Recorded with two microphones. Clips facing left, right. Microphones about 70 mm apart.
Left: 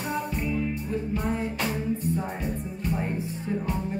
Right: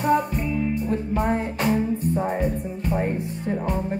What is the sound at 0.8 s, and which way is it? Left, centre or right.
Music, right.